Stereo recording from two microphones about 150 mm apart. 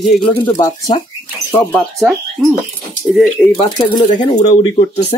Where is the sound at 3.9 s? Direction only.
30° left (ahead or behind).